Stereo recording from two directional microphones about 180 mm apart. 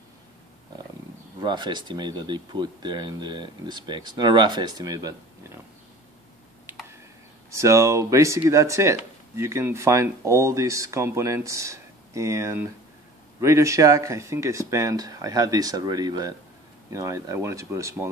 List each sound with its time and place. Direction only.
1.4 s speech: 25° right (ahead or behind)
6.6 s a sound: 10° right (ahead or behind)
7.5 s speech: 15° right (ahead or behind)